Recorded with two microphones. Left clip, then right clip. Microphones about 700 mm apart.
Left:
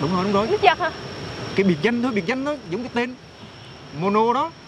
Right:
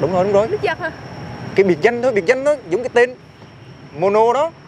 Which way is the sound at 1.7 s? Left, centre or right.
Right.